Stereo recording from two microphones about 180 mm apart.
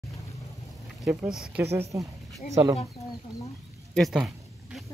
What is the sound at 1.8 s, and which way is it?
Speech, 15° right (ahead or behind).